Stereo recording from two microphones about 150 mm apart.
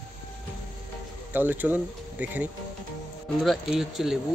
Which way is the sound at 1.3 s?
10° right (ahead or behind).